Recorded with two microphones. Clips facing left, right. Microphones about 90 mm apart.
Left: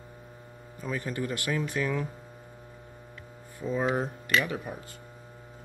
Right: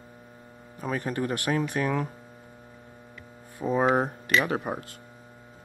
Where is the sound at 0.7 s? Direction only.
60° right (ahead or behind).